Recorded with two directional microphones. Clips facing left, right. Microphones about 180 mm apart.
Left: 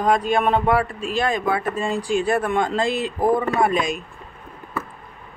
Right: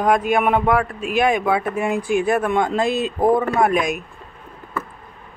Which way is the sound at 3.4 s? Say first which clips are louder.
Right 2 dB; centre (ahead or behind).